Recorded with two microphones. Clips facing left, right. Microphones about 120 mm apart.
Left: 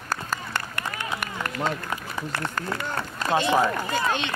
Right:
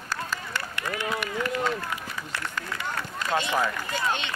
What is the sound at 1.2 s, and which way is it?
Speech, 50° left (ahead or behind).